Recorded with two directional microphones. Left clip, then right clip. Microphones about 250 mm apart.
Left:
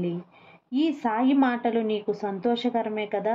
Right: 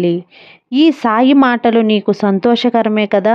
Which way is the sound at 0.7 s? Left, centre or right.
Right.